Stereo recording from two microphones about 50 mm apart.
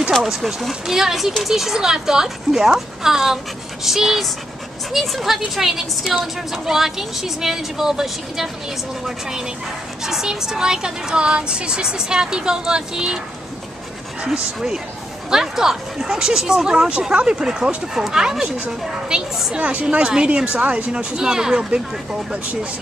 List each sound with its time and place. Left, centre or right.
0.2 s a woman's voice: centre
10.0 s a woman's voice: centre
14.2 s a woman's voice: centre
19.5 s speech: right